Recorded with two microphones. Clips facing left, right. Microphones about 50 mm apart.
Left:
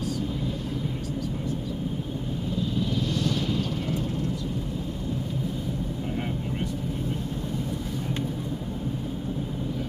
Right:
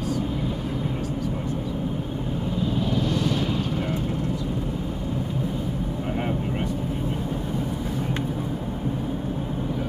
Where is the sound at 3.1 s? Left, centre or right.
Centre.